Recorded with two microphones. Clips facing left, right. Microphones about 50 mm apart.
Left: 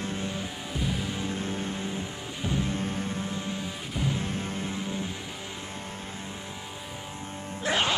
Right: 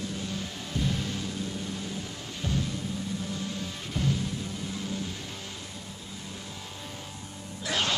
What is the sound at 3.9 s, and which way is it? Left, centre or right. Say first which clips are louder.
Music: right 1 dB; centre.